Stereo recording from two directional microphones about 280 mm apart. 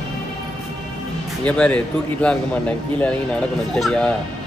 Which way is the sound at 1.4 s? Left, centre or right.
Centre.